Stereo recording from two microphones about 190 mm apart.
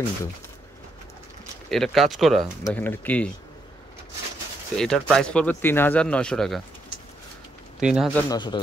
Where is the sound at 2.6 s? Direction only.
10° left (ahead or behind).